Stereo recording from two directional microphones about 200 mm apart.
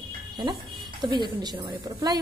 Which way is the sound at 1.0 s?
20° right (ahead or behind).